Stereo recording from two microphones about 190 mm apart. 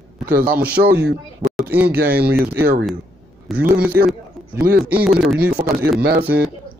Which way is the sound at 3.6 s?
5° right (ahead or behind).